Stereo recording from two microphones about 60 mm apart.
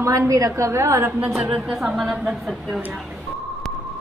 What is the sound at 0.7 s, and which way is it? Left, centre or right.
Speech, right.